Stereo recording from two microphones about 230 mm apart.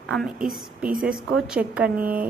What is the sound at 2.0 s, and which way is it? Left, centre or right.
Speech, right.